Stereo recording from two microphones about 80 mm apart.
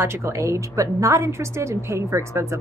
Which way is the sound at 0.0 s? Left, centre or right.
Right.